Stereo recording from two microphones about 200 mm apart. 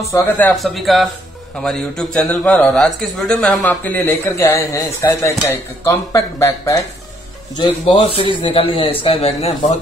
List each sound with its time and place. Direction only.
0.0 s a man's voice: 10° left (ahead or behind); by 9.8 s 35° left (ahead or behind)